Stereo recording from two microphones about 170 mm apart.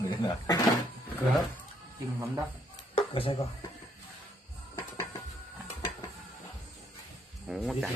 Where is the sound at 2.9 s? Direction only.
30° left (ahead or behind).